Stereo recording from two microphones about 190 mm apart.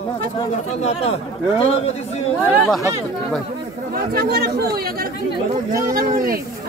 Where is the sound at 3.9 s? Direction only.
55° right (ahead or behind).